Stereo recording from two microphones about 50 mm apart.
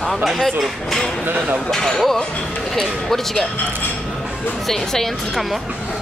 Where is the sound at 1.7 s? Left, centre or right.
Centre.